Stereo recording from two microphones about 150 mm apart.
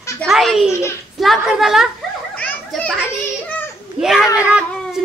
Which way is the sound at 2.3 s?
10° left (ahead or behind).